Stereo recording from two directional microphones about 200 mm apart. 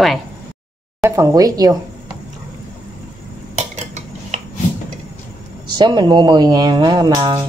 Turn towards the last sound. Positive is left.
turn(degrees=-20)  # may be behind; listen again after turning